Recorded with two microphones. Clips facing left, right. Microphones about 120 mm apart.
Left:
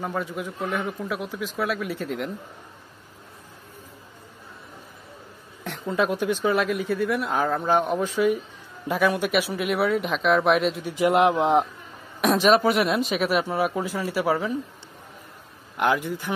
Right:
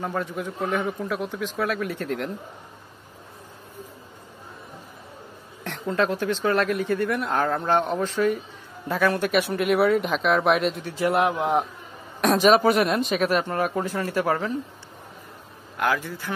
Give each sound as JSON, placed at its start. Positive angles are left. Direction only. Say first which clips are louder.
{"t": 0.0, "sound": "speech", "louder": "right 1 dB", "side_deg": 5}
{"t": 5.6, "sound": "speech", "louder": "even", "side_deg": 5}
{"t": 10.8, "sound": "speech", "louder": "left 2 dB", "side_deg": 15}
{"t": 12.2, "sound": "speech", "louder": "right 1 dB", "side_deg": 0}
{"t": 15.8, "sound": "speech", "louder": "left 2 dB", "side_deg": 20}